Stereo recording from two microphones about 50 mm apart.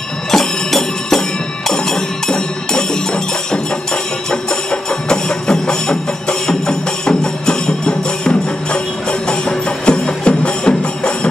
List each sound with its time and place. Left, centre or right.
0.3 s music: centre